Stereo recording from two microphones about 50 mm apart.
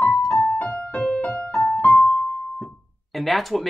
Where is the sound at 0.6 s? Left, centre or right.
Left.